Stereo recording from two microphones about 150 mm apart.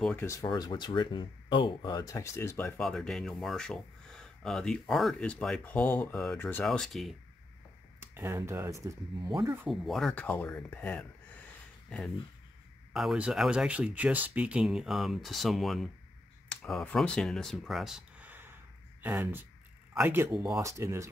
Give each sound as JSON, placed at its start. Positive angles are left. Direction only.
{"t": 0.0, "sound": "speech", "side_deg": 15}
{"t": 0.5, "sound": "speech", "side_deg": 30}
{"t": 2.8, "sound": "speech", "side_deg": 5}
{"t": 8.0, "sound": "speech", "side_deg": -15}
{"t": 9.7, "sound": "speech", "side_deg": 0}
{"t": 12.9, "sound": "speech", "side_deg": 0}
{"t": 20.2, "sound": "speech", "side_deg": 0}
{"t": 20.6, "sound": "speech", "side_deg": -20}